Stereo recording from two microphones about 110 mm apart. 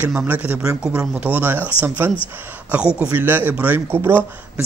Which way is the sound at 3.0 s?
15° right (ahead or behind).